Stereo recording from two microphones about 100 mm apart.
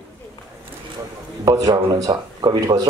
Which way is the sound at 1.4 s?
35° right (ahead or behind).